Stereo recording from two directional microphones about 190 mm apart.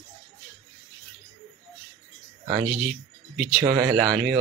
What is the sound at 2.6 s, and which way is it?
Speech, centre (ahead or behind).